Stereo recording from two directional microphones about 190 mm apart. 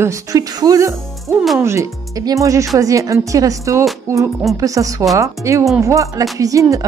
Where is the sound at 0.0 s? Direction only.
15° right (ahead or behind).